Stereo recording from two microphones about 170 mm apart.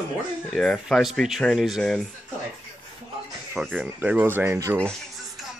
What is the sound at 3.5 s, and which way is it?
Speech, centre (ahead or behind).